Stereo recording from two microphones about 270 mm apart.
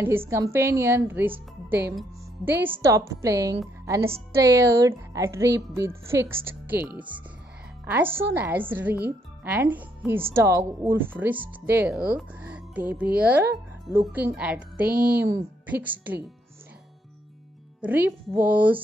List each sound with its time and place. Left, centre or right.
0.3 s a woman's voice: centre
14.9 s speech: right
15.2 s a woman's voice: centre
17.8 s a woman's voice: centre